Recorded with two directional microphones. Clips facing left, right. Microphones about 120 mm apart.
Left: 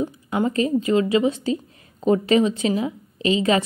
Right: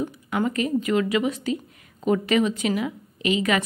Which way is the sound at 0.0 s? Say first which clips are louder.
Left 2 dB; 30° left (ahead or behind).